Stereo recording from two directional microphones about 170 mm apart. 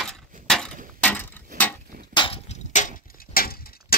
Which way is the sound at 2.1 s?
30° left (ahead or behind).